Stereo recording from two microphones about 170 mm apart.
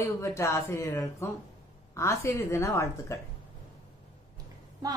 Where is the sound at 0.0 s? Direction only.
15° left (ahead or behind).